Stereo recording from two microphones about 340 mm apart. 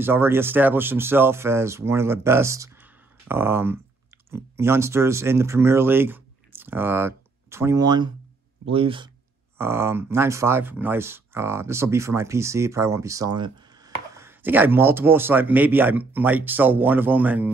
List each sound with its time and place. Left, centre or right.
0.0 s speech: centre